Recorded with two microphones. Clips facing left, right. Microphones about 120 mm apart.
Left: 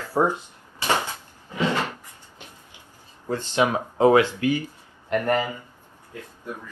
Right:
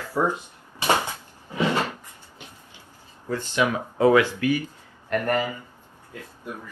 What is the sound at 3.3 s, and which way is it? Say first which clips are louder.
Speech: left 2 dB; 20° left (ahead or behind).